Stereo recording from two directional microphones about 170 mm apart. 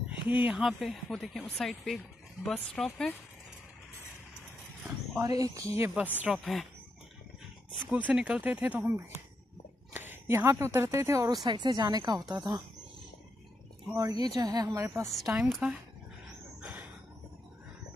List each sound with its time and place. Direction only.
0.3 s speech: 5° right (ahead or behind)
4.8 s speech: 20° right (ahead or behind)
6.1 s speech: 5° right (ahead or behind)
7.7 s a woman's voice: 10° right (ahead or behind)
9.9 s a woman's voice: 15° right (ahead or behind)
14.2 s speech: 20° right (ahead or behind)
15.3 s speech: 5° right (ahead or behind)
16.6 s a sound: 10° right (ahead or behind)